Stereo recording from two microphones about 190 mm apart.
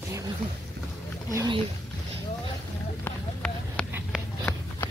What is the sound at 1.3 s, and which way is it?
Speech, 20° right (ahead or behind).